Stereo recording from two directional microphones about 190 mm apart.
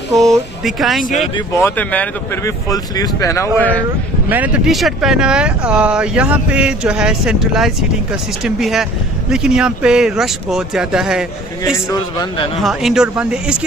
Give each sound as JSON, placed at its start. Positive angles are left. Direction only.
{"t": 0.3, "sound": "speech", "side_deg": 0}
{"t": 1.3, "sound": "speech", "side_deg": 15}
{"t": 2.7, "sound": "speech", "side_deg": 20}
{"t": 4.3, "sound": "speech", "side_deg": -5}
{"t": 11.7, "sound": "a man's voice", "side_deg": 20}
{"t": 12.5, "sound": "speech", "side_deg": 0}